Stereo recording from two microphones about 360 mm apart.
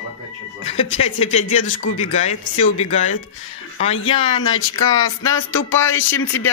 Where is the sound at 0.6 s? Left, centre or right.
Centre.